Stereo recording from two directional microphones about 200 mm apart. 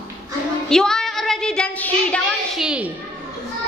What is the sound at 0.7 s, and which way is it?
Child singing, 5° left (ahead or behind).